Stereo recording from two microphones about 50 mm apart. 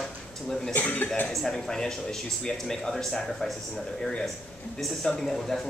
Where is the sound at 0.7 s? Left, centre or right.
Left.